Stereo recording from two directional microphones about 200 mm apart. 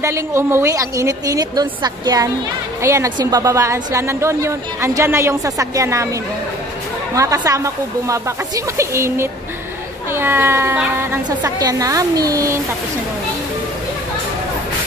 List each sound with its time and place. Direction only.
0.0 s a woman's voice: 15° right (ahead or behind)
7.2 s a woman's voice: 15° right (ahead or behind)